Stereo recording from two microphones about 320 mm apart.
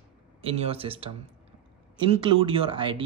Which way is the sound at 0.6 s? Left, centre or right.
Centre.